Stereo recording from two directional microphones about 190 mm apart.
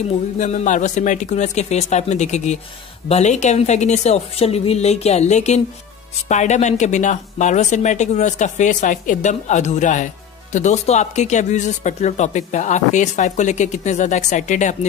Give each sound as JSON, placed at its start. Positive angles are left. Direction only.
{"t": 0.4, "sound": "speech", "side_deg": 40}